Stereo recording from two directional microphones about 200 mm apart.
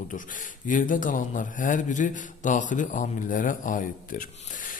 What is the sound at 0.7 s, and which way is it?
A man's voice, 40° left (ahead or behind).